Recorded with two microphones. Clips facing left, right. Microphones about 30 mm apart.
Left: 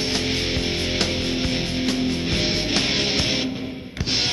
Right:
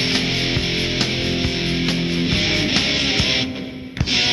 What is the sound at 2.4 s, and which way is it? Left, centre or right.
Music, centre.